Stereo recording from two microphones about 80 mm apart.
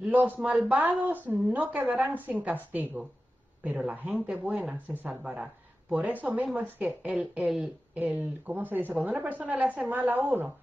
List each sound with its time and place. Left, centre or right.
0.0 s speech: right
0.4 s speech: centre
0.8 s speech: right
3.6 s speech: centre
7.4 s speech: centre
7.9 s speech: right